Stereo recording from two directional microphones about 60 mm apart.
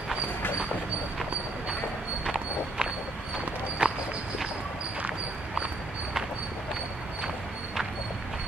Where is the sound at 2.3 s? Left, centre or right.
Centre.